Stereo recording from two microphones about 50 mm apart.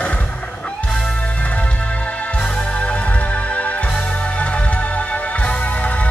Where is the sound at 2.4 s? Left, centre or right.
Left.